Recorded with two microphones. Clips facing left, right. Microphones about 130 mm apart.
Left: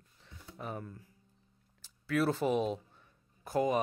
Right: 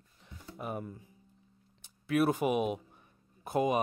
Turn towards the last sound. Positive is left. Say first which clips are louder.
# right 1 dB
turn(degrees=-20)  # may be behind; listen again after turning